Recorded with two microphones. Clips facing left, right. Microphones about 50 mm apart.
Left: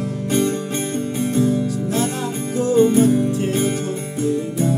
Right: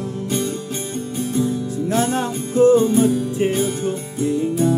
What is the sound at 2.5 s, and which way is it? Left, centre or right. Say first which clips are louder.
Music: right 2 dB; right.